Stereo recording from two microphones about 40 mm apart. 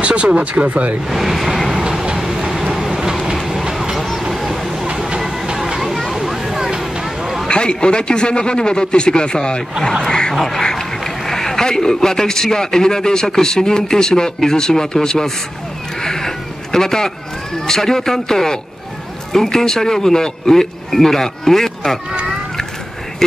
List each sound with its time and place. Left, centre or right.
0.0 s speech: right
1.1 s speech: centre
1.9 s vehicle: centre
3.4 s train: centre
3.9 s vehicle: centre
4.2 s vehicle: centre
5.9 s a sound: centre
6.1 s vehicle: centre
7.4 s a man's voice: left
10.4 s a man's voice: centre
16.0 s a sound: centre
17.6 s a man's voice: centre